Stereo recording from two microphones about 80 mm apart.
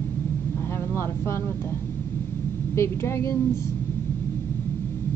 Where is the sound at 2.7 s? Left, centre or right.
Left.